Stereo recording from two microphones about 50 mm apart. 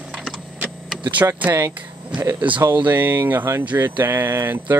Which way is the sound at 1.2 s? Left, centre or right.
Right.